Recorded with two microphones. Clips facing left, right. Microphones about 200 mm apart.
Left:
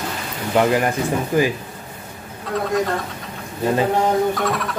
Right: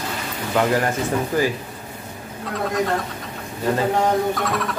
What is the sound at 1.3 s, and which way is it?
Speech, 15° left (ahead or behind).